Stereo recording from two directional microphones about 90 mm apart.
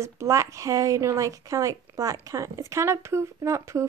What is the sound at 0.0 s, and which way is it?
A woman's voice, 35° right (ahead or behind).